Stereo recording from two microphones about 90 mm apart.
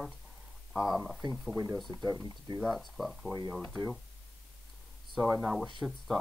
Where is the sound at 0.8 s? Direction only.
5° right (ahead or behind).